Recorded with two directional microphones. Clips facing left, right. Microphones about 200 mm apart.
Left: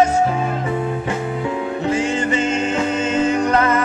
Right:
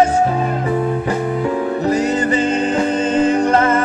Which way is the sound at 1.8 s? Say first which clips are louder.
Right 2 dB; 40° right (ahead or behind).